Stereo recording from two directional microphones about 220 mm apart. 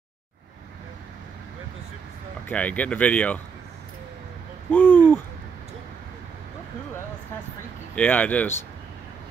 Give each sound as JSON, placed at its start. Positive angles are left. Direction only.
{"t": 2.4, "sound": "speech", "side_deg": 5}
{"t": 4.6, "sound": "owl", "side_deg": 10}
{"t": 7.9, "sound": "speech", "side_deg": 5}